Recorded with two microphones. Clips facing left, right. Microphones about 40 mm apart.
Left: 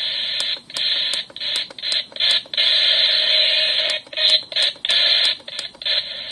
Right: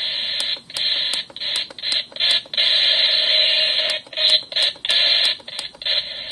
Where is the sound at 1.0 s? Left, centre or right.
Centre.